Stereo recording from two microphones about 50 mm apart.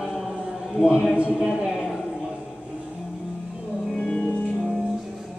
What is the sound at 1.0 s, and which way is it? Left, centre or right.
Speech, centre.